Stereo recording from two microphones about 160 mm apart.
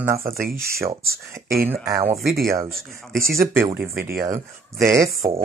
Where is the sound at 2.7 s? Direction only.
65° right (ahead or behind).